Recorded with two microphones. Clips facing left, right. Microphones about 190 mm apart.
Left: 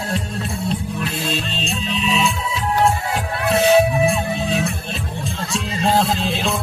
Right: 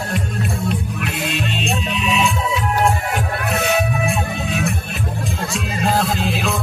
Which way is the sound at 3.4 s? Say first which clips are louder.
Left 7 dB; 30° left (ahead or behind).